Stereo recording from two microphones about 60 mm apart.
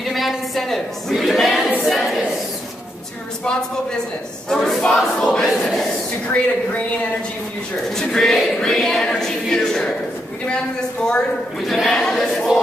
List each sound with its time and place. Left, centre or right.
0.0 s a sound: centre
4.5 s choir: centre
5.2 s speech: centre
5.6 s choir: centre
6.3 s speech: left
7.9 s speech: centre
11.6 s choir: centre